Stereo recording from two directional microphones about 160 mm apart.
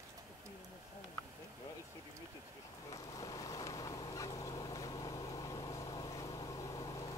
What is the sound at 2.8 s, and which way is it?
Fowl, 20° left (ahead or behind).